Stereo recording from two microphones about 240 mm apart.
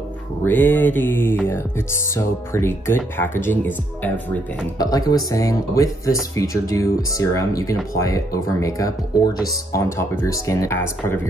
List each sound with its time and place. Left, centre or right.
0.4 s speech: centre